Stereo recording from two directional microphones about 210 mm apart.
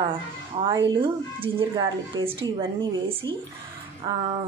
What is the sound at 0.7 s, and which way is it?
A woman's voice, 20° right (ahead or behind).